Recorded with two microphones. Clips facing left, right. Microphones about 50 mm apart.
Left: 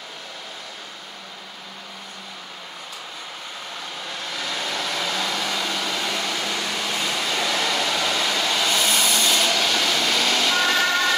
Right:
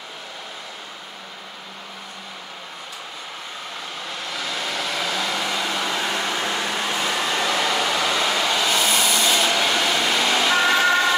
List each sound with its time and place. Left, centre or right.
4.1 s vehicle: centre
5.8 s a sound: right
6.9 s vehicle: centre